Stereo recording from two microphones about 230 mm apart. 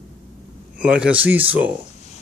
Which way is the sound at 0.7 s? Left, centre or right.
Centre.